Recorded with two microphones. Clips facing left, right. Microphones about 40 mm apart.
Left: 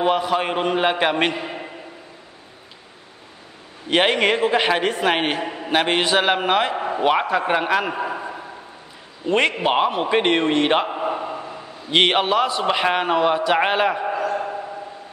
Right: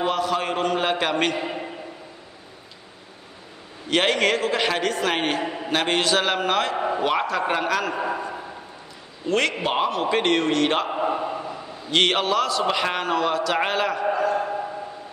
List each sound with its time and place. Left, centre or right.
0.0 s a man's voice: centre
1.3 s a man's voice: centre
3.9 s a man's voice: centre
5.4 s a man's voice: centre
5.7 s a man's voice: centre
6.8 s a sound: centre
7.1 s a man's voice: centre
7.9 s a man's voice: centre
9.3 s a man's voice: left
10.9 s a sound: centre
11.9 s a man's voice: centre
14.0 s a sound: centre